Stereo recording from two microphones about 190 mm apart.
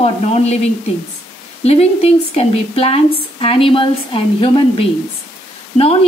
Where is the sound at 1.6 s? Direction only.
35° left (ahead or behind).